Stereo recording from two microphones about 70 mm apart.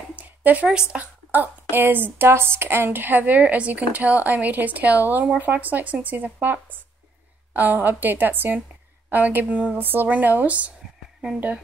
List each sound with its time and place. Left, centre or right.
0.1 s a sound: right
0.7 s speech: centre
1.3 s a woman's voice: right